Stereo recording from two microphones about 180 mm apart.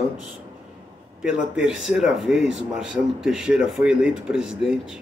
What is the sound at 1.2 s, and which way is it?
Speech, 5° right (ahead or behind).